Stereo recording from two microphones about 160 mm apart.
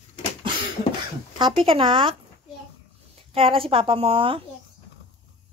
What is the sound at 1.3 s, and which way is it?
Speech, 30° right (ahead or behind).